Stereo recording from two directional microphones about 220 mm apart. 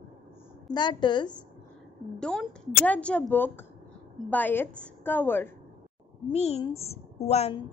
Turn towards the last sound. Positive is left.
turn(degrees=30)  # may be behind; listen again after turning